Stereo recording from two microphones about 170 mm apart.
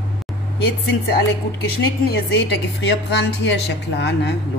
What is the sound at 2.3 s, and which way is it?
A woman's voice, 90° left.